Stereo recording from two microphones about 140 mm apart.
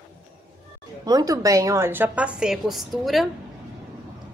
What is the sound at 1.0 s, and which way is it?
Speech, 25° right (ahead or behind).